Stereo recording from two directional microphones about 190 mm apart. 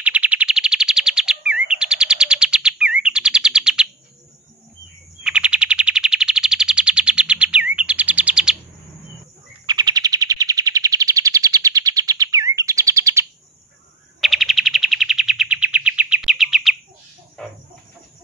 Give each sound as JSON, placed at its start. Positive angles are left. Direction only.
{"t": 0.0, "sound": "chirp", "side_deg": -5}
{"t": 5.2, "sound": "bird", "side_deg": -5}
{"t": 9.7, "sound": "chirp", "side_deg": -20}
{"t": 14.2, "sound": "bird", "side_deg": 0}
{"t": 17.4, "sound": "chicken", "side_deg": 5}